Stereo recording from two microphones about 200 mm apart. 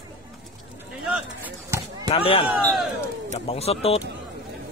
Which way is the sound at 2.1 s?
30° left (ahead or behind).